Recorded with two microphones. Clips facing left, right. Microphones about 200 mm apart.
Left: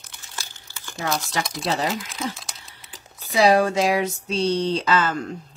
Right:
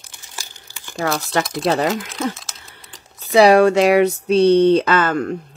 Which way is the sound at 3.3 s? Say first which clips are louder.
Right 7 dB; 70° right (ahead or behind).